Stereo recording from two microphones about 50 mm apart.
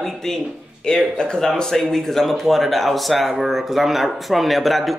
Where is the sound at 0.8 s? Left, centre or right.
Centre.